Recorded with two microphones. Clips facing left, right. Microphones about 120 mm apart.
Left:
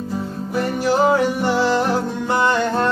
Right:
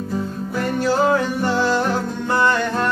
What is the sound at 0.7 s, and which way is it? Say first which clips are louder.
Music: left 1 dB; 15° left (ahead or behind).